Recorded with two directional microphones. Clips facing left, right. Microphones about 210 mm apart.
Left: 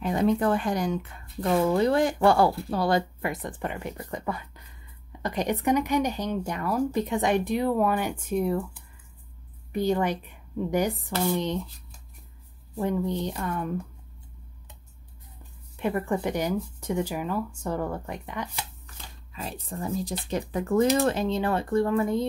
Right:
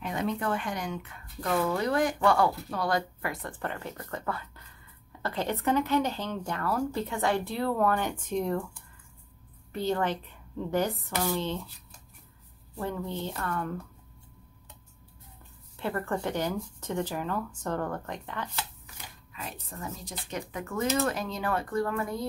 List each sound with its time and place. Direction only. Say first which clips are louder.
0.0 s a woman's voice: left 7 dB; 35° left (ahead or behind); by 11.6 s 15° left (ahead or behind)
12.7 s speech: left 6 dB; 15° left (ahead or behind)
15.8 s speech: left 4 dB; 15° left (ahead or behind)
19.3 s speech: left 6 dB; 30° left (ahead or behind)